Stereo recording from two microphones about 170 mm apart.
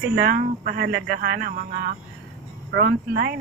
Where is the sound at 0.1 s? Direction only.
65° right (ahead or behind).